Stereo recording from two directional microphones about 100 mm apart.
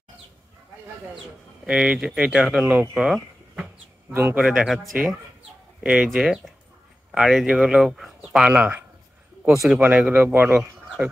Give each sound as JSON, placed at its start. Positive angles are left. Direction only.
{"t": 1.1, "sound": "speech", "side_deg": -5}
{"t": 2.9, "sound": "a sound", "side_deg": -5}
{"t": 4.1, "sound": "a man's voice", "side_deg": -25}
{"t": 4.4, "sound": "speech", "side_deg": -5}
{"t": 5.8, "sound": "speech", "side_deg": -10}